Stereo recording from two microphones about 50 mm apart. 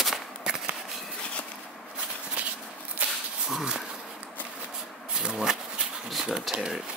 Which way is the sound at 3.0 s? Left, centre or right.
Right.